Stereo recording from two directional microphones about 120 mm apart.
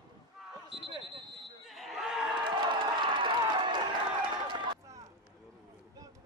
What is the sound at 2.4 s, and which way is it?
Crowd, 40° right (ahead or behind).